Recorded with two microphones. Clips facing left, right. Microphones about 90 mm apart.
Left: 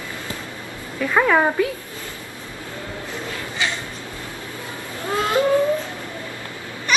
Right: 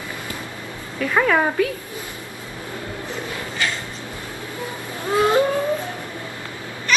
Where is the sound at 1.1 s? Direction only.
10° left (ahead or behind).